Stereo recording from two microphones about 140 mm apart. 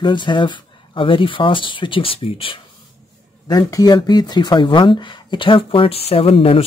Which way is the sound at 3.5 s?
25° left (ahead or behind).